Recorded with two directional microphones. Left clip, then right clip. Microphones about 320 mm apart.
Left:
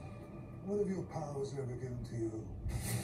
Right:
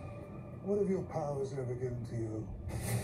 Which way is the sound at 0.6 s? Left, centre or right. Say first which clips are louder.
Right 4 dB; centre.